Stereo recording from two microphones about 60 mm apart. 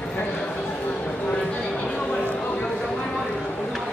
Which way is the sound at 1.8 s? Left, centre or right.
Centre.